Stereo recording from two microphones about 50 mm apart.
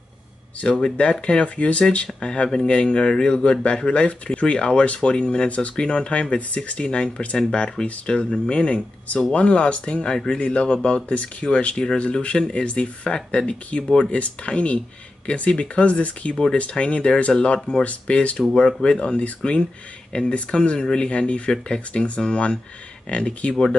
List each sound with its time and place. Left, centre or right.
0.6 s speech: centre